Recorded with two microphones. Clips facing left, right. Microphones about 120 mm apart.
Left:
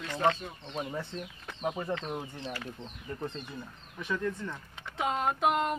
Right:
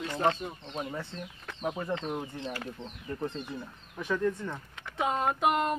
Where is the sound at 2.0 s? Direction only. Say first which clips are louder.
Right 2 dB; 5° right (ahead or behind).